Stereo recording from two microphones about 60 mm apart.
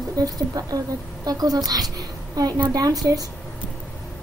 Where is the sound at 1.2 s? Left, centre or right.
Right.